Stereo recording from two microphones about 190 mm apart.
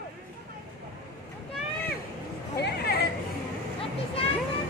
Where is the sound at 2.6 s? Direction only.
60° left (ahead or behind).